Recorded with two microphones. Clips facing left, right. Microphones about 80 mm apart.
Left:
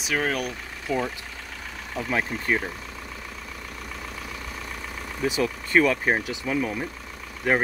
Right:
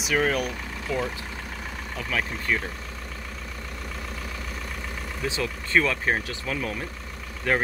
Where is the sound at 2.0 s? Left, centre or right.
Left.